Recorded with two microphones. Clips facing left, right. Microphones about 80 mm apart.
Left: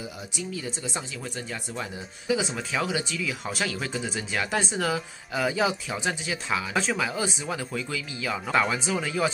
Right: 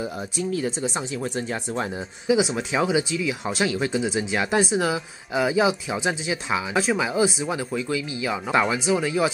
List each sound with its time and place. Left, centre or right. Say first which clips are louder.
0.4 s speech: right 9 dB; right
2.5 s speech: right 6 dB; right